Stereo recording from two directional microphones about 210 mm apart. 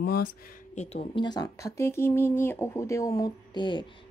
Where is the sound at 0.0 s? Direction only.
45° left (ahead or behind).